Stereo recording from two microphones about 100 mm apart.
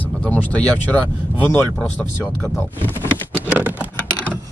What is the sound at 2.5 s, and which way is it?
Speech, 25° left (ahead or behind).